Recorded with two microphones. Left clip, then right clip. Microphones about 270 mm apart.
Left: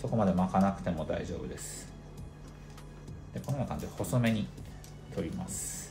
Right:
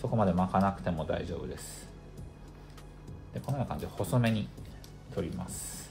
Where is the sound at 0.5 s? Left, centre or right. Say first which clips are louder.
Right 1 dB; centre.